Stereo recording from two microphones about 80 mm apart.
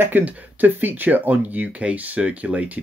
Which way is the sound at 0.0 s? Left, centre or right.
Right.